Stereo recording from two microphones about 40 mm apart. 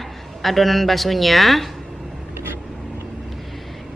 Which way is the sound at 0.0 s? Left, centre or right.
Centre.